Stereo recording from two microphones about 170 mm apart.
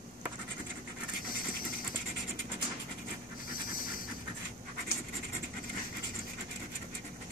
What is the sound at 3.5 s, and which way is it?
Pant, 55° left (ahead or behind).